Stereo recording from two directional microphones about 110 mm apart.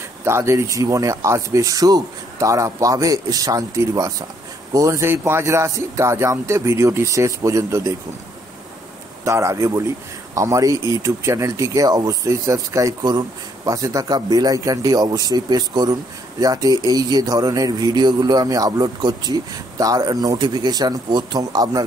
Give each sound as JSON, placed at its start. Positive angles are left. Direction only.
{"t": 0.2, "sound": "speech", "side_deg": -25}
{"t": 9.2, "sound": "speech", "side_deg": -25}